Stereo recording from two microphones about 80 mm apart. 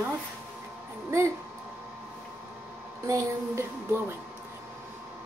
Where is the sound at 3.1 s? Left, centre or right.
Right.